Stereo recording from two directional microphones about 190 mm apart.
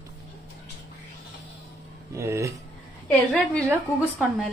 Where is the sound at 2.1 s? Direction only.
15° right (ahead or behind).